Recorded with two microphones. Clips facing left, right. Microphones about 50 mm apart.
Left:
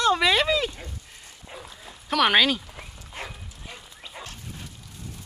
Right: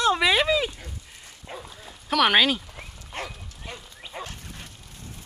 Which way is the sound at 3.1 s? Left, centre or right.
Right.